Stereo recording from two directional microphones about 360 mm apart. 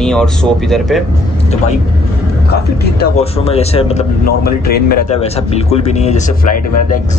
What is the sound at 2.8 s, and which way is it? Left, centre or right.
A man's voice, left.